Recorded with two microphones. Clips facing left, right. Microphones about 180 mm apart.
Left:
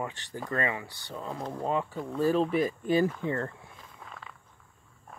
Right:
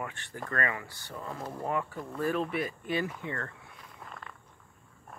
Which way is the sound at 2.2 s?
30° left (ahead or behind).